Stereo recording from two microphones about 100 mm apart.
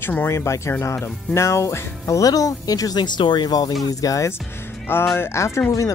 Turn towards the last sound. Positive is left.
turn(degrees=35)  # may be behind; listen again after turning